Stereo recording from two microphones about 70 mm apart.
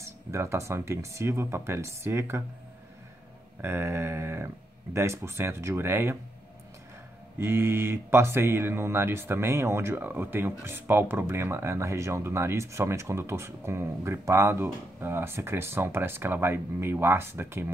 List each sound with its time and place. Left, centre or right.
0.0 s speech: right
3.6 s speech: right
7.3 s speech: right